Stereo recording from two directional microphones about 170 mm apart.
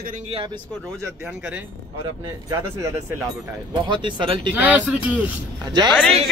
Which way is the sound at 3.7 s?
25° right (ahead or behind).